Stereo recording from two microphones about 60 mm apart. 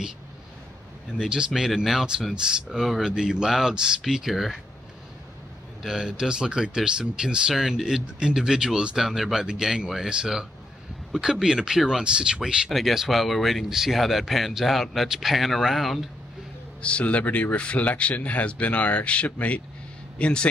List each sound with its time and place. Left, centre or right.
1.1 s speech: centre
5.8 s speech: centre
16.8 s speech: left